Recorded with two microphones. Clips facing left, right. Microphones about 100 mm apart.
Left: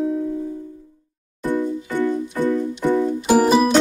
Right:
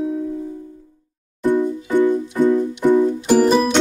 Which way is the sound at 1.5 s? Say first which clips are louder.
Right 4 dB; 20° right (ahead or behind).